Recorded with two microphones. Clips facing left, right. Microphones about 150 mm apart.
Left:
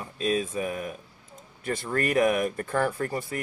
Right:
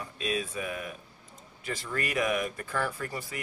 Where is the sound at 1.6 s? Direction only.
50° left (ahead or behind).